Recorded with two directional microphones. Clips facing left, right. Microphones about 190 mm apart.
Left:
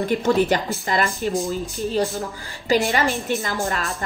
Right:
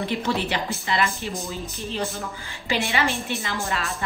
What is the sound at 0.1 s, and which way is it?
A woman's voice, 45° left (ahead or behind).